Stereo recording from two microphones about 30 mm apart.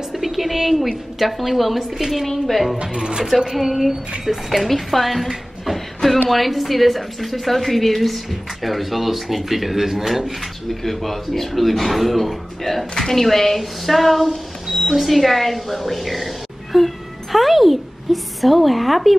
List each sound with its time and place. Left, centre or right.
0.1 s a sound: centre
1.2 s a woman's voice: centre
2.2 s a woman's voice: centre
2.8 s speech: right
3.5 s a woman's voice: centre
5.7 s a sound: centre
6.2 s a woman's voice: centre